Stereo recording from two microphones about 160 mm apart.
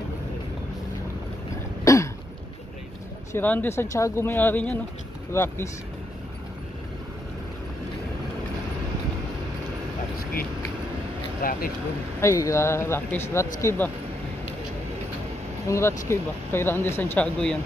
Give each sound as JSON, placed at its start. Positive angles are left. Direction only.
{"t": 1.9, "sound": "throat clearing", "side_deg": 20}
{"t": 3.3, "sound": "speech", "side_deg": 10}
{"t": 11.4, "sound": "a sound", "side_deg": 65}
{"t": 12.2, "sound": "speech", "side_deg": 20}
{"t": 15.6, "sound": "speech", "side_deg": 20}